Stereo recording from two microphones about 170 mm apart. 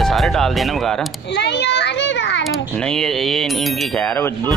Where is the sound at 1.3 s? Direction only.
90° left.